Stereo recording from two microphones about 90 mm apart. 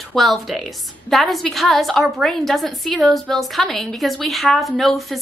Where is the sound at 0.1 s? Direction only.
Centre (ahead or behind).